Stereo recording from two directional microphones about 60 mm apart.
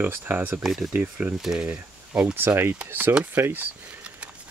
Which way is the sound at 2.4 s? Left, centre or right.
Right.